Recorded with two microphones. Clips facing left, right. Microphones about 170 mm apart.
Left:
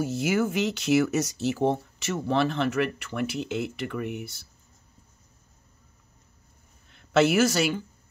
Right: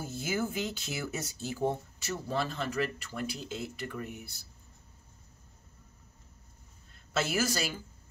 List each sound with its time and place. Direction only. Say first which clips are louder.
0.0 s speech: left 8 dB; 80° left
6.9 s a woman's voice: left 11 dB; 70° left (ahead or behind)